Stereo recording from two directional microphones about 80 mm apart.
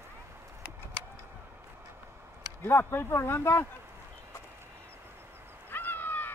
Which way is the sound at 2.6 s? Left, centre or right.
Left.